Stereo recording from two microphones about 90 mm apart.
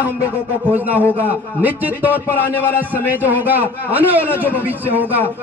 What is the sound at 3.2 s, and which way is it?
Speech, 20° right (ahead or behind).